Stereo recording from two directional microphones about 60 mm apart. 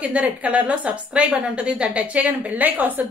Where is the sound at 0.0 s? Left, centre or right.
Right.